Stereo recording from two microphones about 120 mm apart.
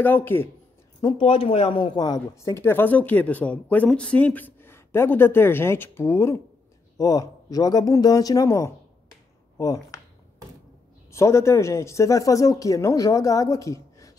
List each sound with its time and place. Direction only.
0.0 s speech: 15° left (ahead or behind)
1.0 s speech: 50° left (ahead or behind); by 9.9 s 30° left (ahead or behind)
11.1 s speech: 25° left (ahead or behind)